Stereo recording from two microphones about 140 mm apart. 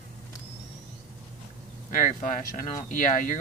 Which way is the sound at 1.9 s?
70° left (ahead or behind).